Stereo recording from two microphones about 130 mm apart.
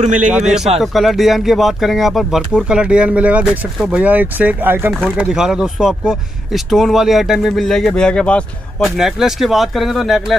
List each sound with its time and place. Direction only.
0.0 s a man's voice: 75° right (ahead or behind)
0.3 s speech: 5° right (ahead or behind)